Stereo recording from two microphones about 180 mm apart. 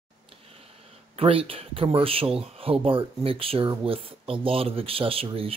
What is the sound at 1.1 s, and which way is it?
Speech, 30° right (ahead or behind).